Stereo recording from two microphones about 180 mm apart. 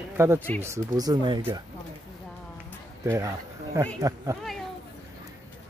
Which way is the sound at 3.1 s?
15° right (ahead or behind).